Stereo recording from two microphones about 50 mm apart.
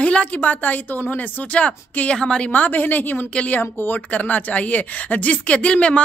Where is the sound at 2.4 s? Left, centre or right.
Left.